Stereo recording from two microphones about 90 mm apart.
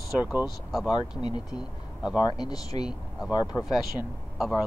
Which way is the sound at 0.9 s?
55° left (ahead or behind).